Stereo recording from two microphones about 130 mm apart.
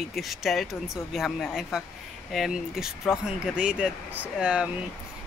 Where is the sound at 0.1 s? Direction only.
Centre (ahead or behind).